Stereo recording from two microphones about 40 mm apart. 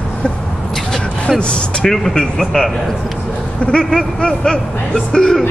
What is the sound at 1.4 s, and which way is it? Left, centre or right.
Speech, left.